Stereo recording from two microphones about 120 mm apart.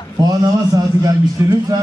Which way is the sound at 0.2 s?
30° right (ahead or behind).